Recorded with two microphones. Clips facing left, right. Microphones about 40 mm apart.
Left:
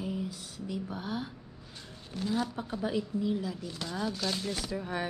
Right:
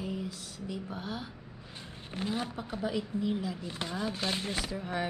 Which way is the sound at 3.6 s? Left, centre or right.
Right.